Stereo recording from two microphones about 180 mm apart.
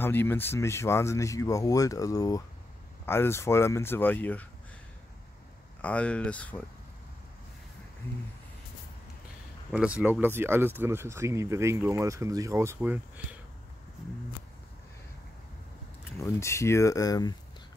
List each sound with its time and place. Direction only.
0.0 s speech: 10° left (ahead or behind)
5.8 s speech: 5° left (ahead or behind)
9.7 s speech: 5° right (ahead or behind)
16.0 s speech: 15° left (ahead or behind)